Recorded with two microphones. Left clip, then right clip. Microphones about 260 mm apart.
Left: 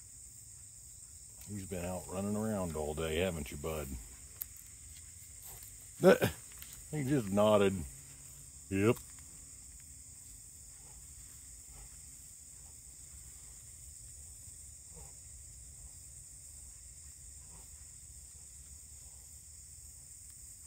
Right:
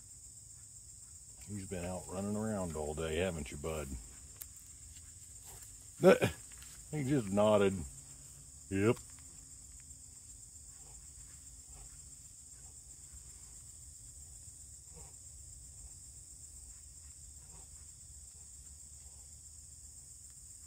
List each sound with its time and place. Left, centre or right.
1.4 s speech: centre
5.5 s a sound: centre
6.9 s speech: centre